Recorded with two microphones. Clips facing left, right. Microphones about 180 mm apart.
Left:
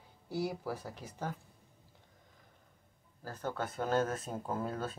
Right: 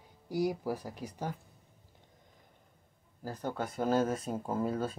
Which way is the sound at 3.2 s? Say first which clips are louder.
Right 2 dB; 15° right (ahead or behind).